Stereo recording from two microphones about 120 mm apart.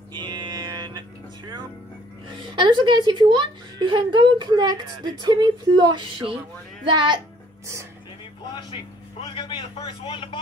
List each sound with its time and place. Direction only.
0.1 s music: 40° right (ahead or behind)
2.2 s a child's voice: 40° right (ahead or behind)
8.5 s a man's voice: 45° left (ahead or behind)